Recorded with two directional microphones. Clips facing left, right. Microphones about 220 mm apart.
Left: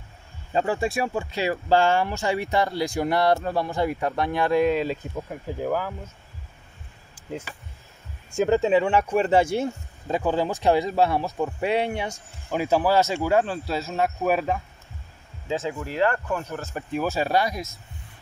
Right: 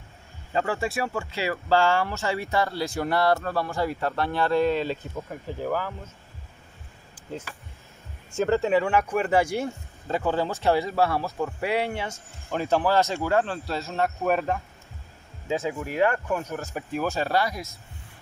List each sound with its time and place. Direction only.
0.5 s speech: 20° left (ahead or behind)
8.4 s speech: 15° left (ahead or behind)
15.4 s speech: 10° right (ahead or behind)
16.7 s speech: centre (ahead or behind)
17.2 s speech: 15° left (ahead or behind)